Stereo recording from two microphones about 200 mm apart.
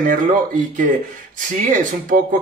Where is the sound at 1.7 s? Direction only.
40° right (ahead or behind).